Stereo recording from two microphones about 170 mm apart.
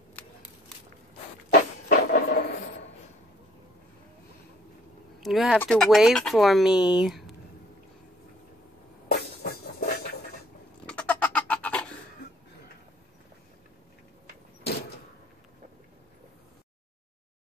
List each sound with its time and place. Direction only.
1.5 s a sound: 55° left (ahead or behind)
5.2 s speech: centre (ahead or behind)
9.1 s train: 65° left (ahead or behind)
10.9 s bird: 5° left (ahead or behind)